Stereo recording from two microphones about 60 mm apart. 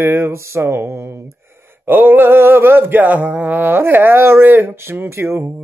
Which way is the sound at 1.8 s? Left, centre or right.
Right.